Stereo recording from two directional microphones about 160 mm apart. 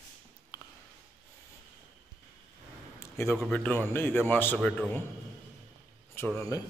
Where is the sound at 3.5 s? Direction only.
10° left (ahead or behind).